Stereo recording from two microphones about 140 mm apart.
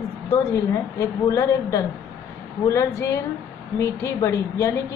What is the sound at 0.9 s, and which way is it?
A woman's voice, 20° left (ahead or behind).